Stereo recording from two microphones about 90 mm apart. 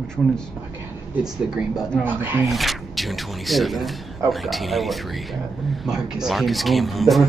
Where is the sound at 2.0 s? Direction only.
25° right (ahead or behind).